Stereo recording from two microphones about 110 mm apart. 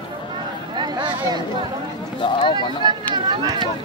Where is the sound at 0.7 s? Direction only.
45° right (ahead or behind).